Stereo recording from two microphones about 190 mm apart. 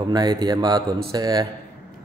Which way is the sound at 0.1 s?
20° right (ahead or behind).